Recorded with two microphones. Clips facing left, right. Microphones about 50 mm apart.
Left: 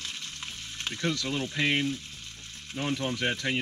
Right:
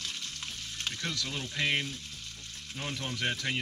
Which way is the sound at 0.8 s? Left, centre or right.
Centre.